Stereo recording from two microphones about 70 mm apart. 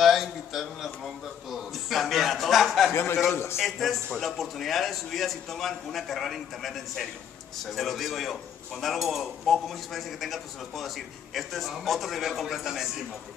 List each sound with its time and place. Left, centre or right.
0.0 s a sound: centre
2.9 s a man's voice: left
3.5 s speech: centre